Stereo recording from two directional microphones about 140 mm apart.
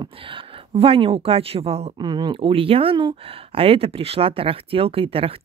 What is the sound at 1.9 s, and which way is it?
Speech, 30° right (ahead or behind).